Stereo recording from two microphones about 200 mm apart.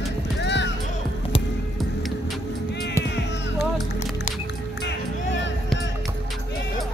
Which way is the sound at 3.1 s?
60° left (ahead or behind).